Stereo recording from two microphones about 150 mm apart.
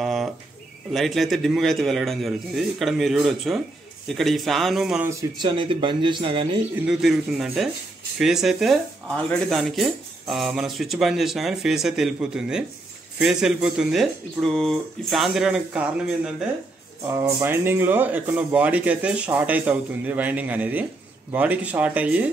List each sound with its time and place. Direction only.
0.0 s bird: centre (ahead or behind)
0.9 s speech: centre (ahead or behind)
5.4 s speech: 35° right (ahead or behind)
6.9 s speech: centre (ahead or behind)
17.1 s speech: 15° right (ahead or behind)